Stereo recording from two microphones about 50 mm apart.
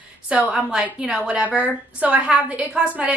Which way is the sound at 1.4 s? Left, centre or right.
Right.